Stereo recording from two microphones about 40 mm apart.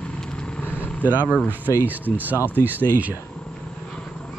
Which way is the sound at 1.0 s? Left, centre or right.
Right.